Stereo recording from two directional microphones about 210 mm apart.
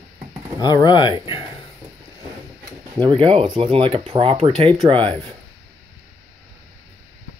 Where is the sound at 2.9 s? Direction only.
25° right (ahead or behind).